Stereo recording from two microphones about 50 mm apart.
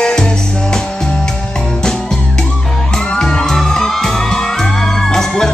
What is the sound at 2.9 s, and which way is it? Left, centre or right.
Music, centre.